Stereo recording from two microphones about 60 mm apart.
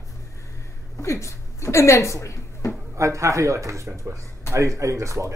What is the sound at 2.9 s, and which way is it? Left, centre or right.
Speech, right.